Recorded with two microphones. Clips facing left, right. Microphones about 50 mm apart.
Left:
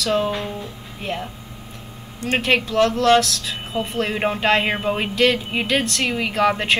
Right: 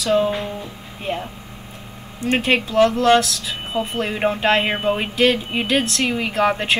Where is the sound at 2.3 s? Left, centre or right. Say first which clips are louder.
Right 1 dB; centre.